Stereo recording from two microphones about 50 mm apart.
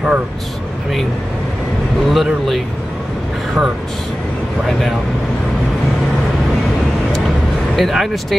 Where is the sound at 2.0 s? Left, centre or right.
Centre.